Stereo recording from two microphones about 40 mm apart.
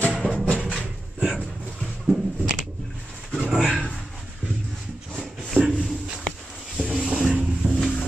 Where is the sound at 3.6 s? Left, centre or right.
Centre.